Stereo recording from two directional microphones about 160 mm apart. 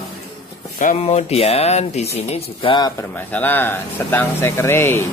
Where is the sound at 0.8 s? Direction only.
45° left (ahead or behind); by 2.9 s 30° left (ahead or behind).